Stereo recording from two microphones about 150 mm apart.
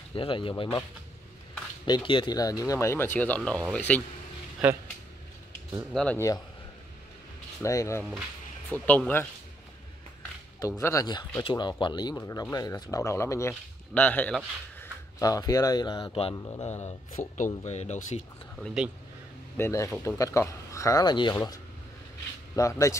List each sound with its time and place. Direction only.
0.1 s speech: 35° left (ahead or behind)
1.9 s speech: 30° left (ahead or behind); by 4.0 s 10° left (ahead or behind)
4.6 s speech: 5° right (ahead or behind)
5.8 s speech: 5° left (ahead or behind)
6.1 s speech: 20° left (ahead or behind)
7.6 s speech: 20° left (ahead or behind)
10.7 s speech: 20° left (ahead or behind)
12.2 s speech: 20° left (ahead or behind)
15.1 s speech: 25° left (ahead or behind); by 16.3 s 40° left (ahead or behind)
16.8 s speech: 55° left (ahead or behind)
19.5 s speech: 15° left (ahead or behind)
22.6 s speech: 20° left (ahead or behind)